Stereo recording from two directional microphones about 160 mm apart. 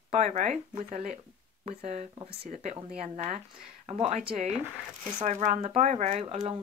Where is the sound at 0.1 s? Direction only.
45° right (ahead or behind).